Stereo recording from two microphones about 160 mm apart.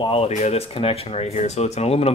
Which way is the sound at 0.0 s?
40° left (ahead or behind).